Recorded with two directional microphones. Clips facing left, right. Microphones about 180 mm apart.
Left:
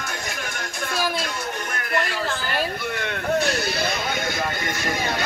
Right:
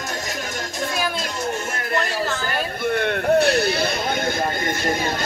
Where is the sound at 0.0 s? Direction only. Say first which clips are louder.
Right 3 dB; 40° right (ahead or behind).